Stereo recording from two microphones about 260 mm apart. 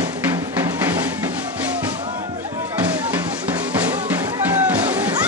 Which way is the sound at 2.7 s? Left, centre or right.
Centre.